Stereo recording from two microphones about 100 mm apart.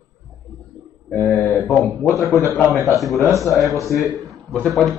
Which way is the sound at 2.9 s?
Centre (ahead or behind).